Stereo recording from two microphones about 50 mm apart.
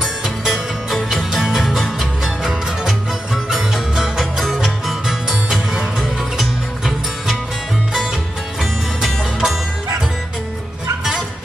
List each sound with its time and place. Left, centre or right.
0.0 s music: centre
1.4 s music: centre